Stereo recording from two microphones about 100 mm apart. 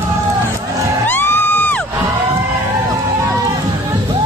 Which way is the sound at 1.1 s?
20° left (ahead or behind).